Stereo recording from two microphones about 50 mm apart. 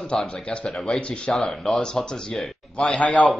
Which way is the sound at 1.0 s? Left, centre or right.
Left.